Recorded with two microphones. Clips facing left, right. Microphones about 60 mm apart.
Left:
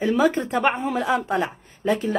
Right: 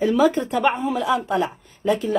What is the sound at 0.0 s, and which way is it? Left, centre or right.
A woman's voice, left.